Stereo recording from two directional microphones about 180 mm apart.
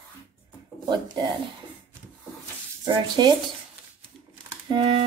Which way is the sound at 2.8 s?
25° right (ahead or behind).